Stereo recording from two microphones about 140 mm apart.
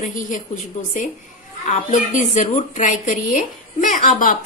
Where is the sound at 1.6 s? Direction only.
65° left (ahead or behind).